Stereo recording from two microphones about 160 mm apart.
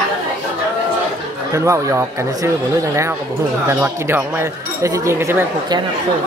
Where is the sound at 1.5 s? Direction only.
20° right (ahead or behind).